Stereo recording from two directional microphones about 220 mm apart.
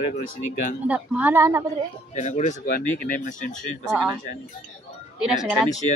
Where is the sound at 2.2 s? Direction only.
30° left (ahead or behind).